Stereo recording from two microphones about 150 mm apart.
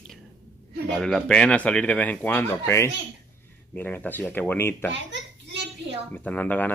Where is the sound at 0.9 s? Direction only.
5° left (ahead or behind).